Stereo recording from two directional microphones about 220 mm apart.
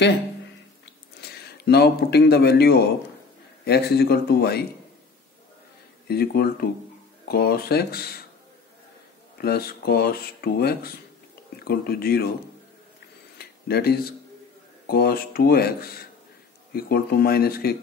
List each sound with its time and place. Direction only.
1.6 s speech: 45° left (ahead or behind)
6.0 s speech: 45° left (ahead or behind)
9.4 s speech: 45° left (ahead or behind)
13.4 s a sound: 45° left (ahead or behind)
14.9 s speech: 45° left (ahead or behind)